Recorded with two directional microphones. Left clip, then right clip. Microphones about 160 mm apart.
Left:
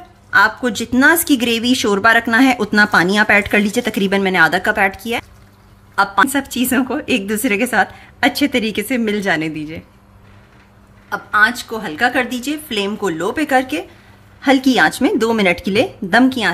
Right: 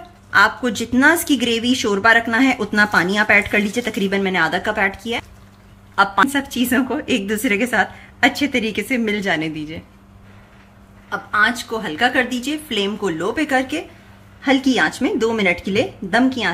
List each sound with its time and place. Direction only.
0.3 s speech: 15° left (ahead or behind)
5.9 s a woman's voice: 10° left (ahead or behind)
6.3 s speech: 20° left (ahead or behind)
11.1 s speech: 20° left (ahead or behind)